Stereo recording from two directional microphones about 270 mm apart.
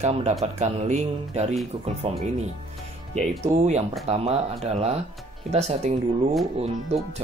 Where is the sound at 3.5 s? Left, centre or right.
Right.